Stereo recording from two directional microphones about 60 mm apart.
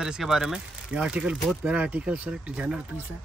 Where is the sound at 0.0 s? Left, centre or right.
Centre.